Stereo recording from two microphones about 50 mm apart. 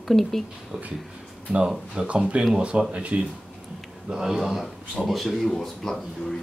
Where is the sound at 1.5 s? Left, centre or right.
Right.